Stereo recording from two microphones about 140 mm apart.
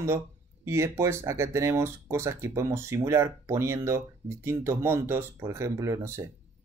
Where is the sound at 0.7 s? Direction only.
20° right (ahead or behind).